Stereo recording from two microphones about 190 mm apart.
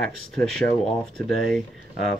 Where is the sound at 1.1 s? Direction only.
5° left (ahead or behind).